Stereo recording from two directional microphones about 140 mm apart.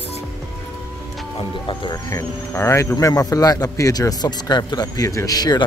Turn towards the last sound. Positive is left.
turn(degrees=30)  # may be behind; listen again after turning